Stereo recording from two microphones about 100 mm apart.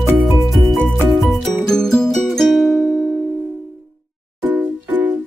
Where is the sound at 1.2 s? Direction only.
5° left (ahead or behind).